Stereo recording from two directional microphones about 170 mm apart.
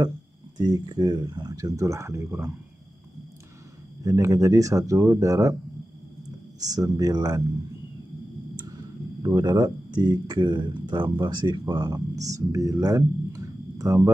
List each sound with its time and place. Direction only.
0.6 s speech: 25° right (ahead or behind)
4.0 s speech: 20° right (ahead or behind)
6.6 s speech: 20° right (ahead or behind)
9.2 s speech: 25° right (ahead or behind)